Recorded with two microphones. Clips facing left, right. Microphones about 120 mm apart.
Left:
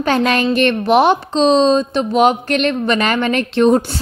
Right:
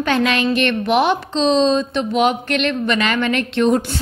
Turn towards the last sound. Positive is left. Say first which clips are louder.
# left 4 dB
turn(degrees=40)  # may be behind; listen again after turning